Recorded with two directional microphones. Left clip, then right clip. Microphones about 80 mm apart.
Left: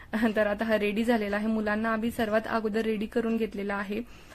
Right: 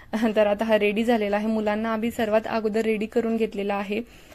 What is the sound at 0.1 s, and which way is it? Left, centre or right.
A woman's voice, right.